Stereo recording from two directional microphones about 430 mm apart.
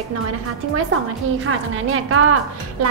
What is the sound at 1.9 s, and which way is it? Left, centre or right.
Speech, right.